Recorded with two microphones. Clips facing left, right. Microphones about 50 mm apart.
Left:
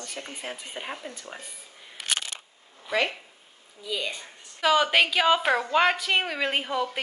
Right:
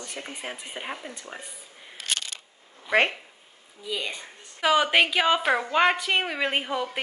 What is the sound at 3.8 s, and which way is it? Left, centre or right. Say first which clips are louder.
A woman's voice: even; centre.